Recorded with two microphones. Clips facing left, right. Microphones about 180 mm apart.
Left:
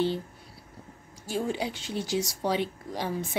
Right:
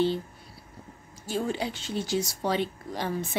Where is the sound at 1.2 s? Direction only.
10° left (ahead or behind).